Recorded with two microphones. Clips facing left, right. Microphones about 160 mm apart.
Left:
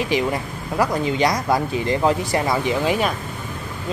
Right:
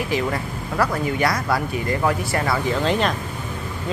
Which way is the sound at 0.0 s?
20° left (ahead or behind).